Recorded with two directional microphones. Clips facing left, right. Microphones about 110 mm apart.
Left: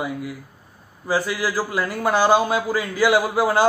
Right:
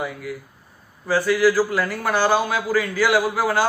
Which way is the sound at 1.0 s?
20° left (ahead or behind).